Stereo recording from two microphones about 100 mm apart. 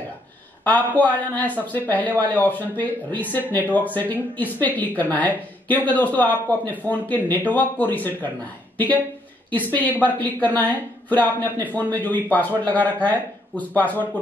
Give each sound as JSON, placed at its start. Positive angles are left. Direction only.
{"t": 0.7, "sound": "speech", "side_deg": 15}